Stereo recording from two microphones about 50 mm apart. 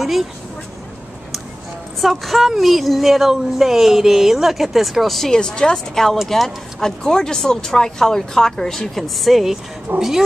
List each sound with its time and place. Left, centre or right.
0.0 s speech: centre
2.0 s speech: centre
5.3 s speech: centre